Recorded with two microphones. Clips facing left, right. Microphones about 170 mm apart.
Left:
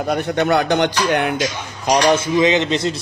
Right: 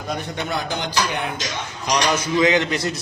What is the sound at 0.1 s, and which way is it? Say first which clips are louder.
Speech: left 9 dB; 60° left (ahead or behind).